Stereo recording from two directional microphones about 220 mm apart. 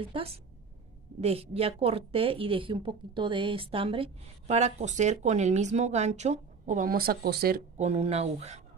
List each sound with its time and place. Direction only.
0.0 s a woman's voice: 25° right (ahead or behind)